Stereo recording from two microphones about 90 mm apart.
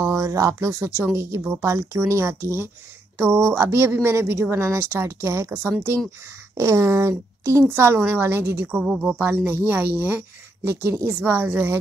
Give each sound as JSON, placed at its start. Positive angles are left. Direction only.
{"t": 0.0, "sound": "speech", "side_deg": -35}
{"t": 8.7, "sound": "speech", "side_deg": -5}
{"t": 9.2, "sound": "speech", "side_deg": -20}